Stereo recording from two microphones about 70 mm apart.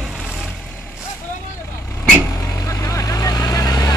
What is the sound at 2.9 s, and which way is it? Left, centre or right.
Vehicle, left.